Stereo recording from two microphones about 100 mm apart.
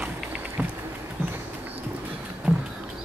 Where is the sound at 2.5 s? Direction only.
15° right (ahead or behind).